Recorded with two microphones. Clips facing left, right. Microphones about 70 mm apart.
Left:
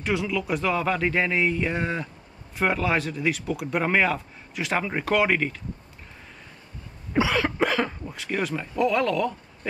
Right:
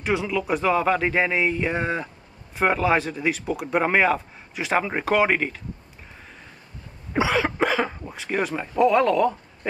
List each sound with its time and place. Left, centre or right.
0.0 s speech: centre
3.6 s speech: centre
7.2 s a sound: centre
8.9 s speech: centre